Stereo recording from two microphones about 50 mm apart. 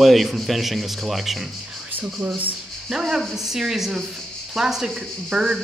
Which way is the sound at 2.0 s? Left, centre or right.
Right.